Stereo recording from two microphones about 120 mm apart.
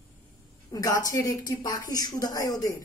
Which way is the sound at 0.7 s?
30° left (ahead or behind).